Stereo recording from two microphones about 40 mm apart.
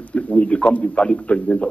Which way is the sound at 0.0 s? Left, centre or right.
Left.